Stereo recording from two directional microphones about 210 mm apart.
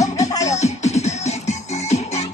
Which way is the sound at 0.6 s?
30° left (ahead or behind).